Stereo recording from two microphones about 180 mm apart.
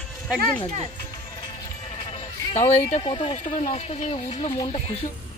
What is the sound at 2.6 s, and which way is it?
Speech, 40° left (ahead or behind).